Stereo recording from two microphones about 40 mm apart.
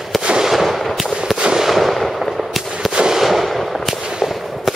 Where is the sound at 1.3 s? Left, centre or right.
Centre.